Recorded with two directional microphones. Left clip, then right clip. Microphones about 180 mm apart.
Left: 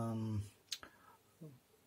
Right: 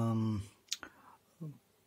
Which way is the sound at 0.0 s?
45° right (ahead or behind).